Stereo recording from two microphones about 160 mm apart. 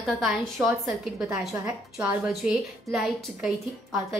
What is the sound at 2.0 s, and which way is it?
A woman's voice, 5° right (ahead or behind).